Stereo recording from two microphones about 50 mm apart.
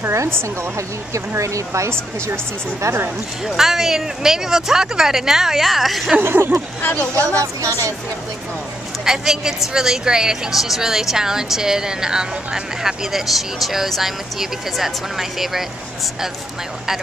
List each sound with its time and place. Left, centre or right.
0.7 s speech: right
3.4 s a woman's voice: centre
6.2 s speech: right
7.0 s speech: left
7.3 s speech: right
9.0 s a woman's voice: centre